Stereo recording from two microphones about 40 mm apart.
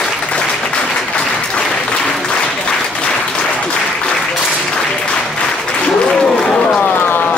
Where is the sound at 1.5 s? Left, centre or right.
Centre.